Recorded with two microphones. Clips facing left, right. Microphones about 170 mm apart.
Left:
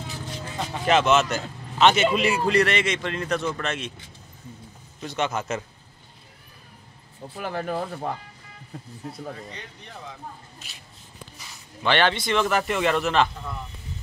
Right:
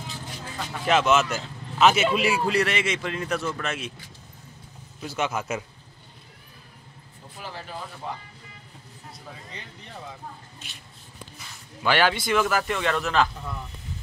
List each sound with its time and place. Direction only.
0.8 s a man's voice: 5° right (ahead or behind)
5.0 s a man's voice: 5° right (ahead or behind)
7.3 s speech: 55° left (ahead or behind)
11.8 s a man's voice: 5° right (ahead or behind)